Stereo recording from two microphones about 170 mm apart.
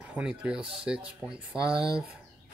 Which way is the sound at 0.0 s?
5° right (ahead or behind).